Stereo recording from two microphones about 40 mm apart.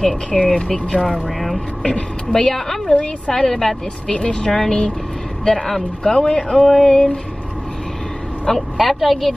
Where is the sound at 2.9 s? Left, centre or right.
Left.